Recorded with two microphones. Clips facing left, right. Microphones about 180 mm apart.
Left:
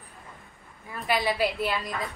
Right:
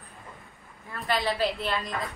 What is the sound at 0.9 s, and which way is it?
A woman's voice, 15° left (ahead or behind).